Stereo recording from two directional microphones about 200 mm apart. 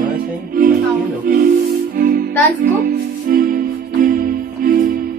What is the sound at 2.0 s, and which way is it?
Music, 45° right (ahead or behind).